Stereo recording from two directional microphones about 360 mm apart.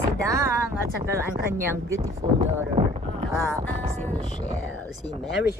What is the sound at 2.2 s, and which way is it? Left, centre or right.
Speech, centre.